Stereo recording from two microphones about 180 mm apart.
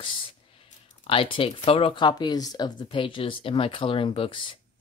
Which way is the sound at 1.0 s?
30° left (ahead or behind).